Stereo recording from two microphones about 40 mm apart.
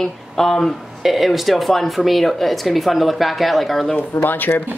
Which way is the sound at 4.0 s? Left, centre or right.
Left.